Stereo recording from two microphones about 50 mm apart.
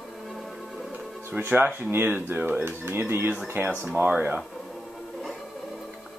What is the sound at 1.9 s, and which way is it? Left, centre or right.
Speech, right.